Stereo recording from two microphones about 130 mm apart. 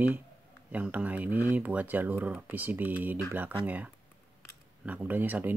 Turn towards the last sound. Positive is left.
turn(degrees=-15)  # may be behind; listen again after turning